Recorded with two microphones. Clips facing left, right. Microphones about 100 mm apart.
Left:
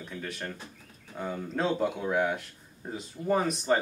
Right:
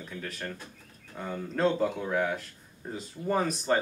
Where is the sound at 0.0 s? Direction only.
Centre (ahead or behind).